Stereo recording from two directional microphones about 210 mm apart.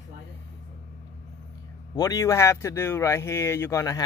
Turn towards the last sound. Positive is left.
turn(degrees=15)  # may be behind; listen again after turning